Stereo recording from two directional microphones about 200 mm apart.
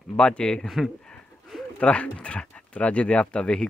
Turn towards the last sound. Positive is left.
turn(degrees=5)  # may be behind; listen again after turning